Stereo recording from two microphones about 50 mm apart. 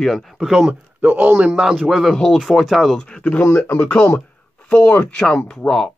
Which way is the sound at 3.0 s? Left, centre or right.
Centre.